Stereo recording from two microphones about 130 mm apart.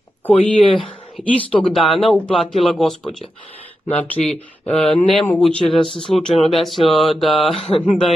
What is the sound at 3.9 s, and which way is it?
Speech, 10° left (ahead or behind).